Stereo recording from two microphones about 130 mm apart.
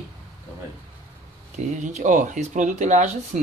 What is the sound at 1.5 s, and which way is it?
Speech, 65° right (ahead or behind).